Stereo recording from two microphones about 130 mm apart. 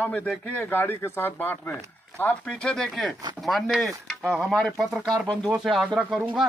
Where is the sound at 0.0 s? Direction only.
10° left (ahead or behind).